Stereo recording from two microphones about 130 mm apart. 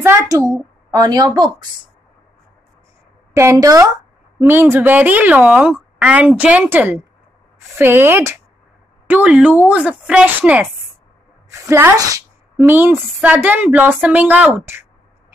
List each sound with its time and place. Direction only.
0.0 s a child's voice: 20° right (ahead or behind)
3.3 s a woman's voice: 25° right (ahead or behind)